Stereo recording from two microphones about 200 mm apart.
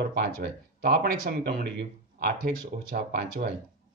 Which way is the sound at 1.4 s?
50° right (ahead or behind).